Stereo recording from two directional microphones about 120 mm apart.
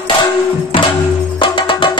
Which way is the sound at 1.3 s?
45° left (ahead or behind).